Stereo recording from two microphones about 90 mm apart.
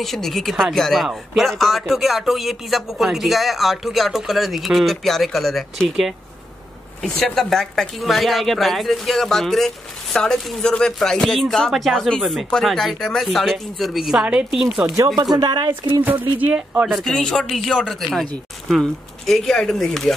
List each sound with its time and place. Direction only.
0.0 s speech: centre (ahead or behind)
15.3 s a woman's voice: 50° right (ahead or behind)
16.0 s speech: 20° right (ahead or behind)
16.8 s speech: centre (ahead or behind)